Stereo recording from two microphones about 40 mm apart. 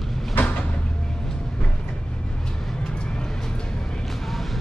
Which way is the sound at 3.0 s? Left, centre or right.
Left.